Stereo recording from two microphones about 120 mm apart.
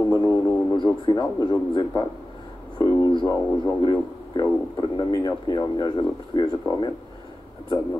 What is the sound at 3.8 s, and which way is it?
Speech, 35° left (ahead or behind).